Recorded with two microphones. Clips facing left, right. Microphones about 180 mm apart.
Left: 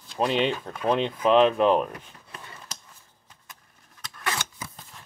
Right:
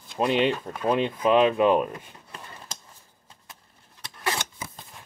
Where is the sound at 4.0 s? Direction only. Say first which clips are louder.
Right 2 dB; 25° right (ahead or behind).